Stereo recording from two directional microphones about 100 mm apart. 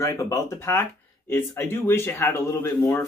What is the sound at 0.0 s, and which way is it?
A man's voice, 30° left (ahead or behind).